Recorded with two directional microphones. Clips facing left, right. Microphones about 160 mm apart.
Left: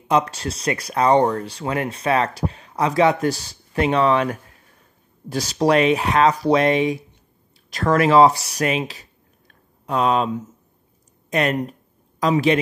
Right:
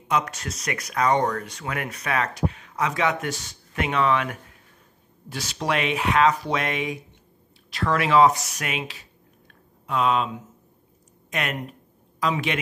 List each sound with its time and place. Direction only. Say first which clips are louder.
0.1 s speech: left 6 dB; 30° left (ahead or behind)
7.7 s speech: left 5 dB; 45° left (ahead or behind)